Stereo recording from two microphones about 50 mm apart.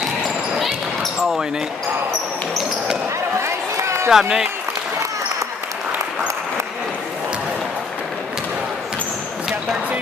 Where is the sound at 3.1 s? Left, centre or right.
Right.